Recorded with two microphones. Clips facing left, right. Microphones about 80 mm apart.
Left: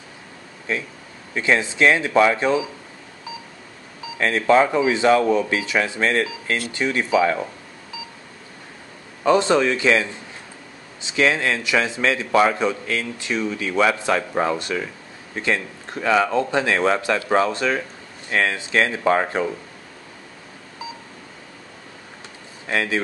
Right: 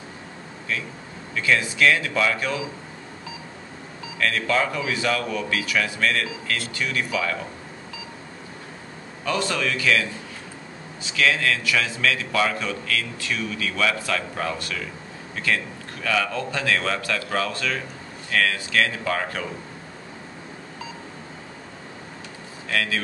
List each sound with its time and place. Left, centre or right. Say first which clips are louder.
0.7 s a man's voice: left 3 dB; left
4.2 s a man's voice: left 6 dB; left
9.2 s a man's voice: left 8 dB; left
22.7 s a man's voice: left 3 dB; left